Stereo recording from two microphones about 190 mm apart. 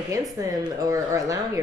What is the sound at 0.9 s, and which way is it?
Speech, 15° right (ahead or behind).